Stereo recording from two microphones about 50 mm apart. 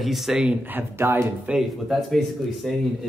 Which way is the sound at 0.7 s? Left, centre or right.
Right.